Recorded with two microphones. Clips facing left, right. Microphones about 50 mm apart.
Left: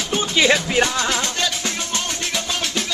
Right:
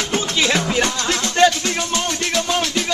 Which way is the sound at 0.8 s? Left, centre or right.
Centre.